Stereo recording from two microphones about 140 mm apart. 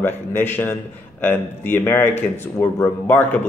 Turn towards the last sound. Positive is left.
turn(degrees=15)  # may be behind; listen again after turning